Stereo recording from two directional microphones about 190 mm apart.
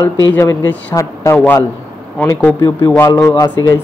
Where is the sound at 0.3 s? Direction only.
15° left (ahead or behind).